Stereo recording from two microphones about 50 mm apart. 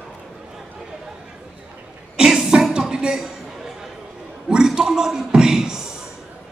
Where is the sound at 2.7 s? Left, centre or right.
Centre.